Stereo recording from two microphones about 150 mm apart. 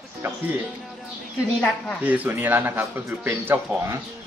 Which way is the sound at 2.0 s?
10° right (ahead or behind).